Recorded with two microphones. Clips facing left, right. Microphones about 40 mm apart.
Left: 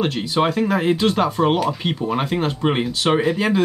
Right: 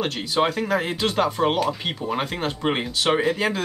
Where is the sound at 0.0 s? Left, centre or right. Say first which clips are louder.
Left 3 dB; centre.